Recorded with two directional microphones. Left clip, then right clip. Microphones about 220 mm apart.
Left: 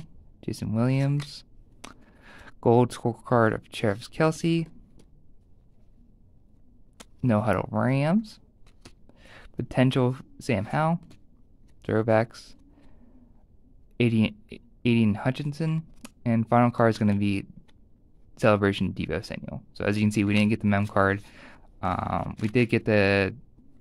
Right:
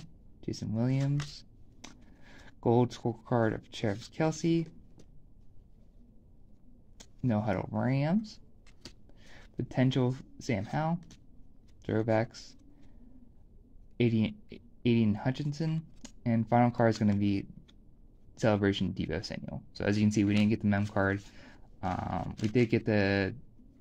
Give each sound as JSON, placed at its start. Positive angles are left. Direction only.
{"t": 0.4, "sound": "speech", "side_deg": 25}
{"t": 7.2, "sound": "speech", "side_deg": 25}
{"t": 11.8, "sound": "a sound", "side_deg": 25}
{"t": 13.9, "sound": "speech", "side_deg": 20}